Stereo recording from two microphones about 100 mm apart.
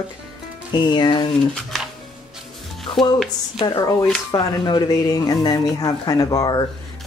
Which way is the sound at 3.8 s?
35° left (ahead or behind).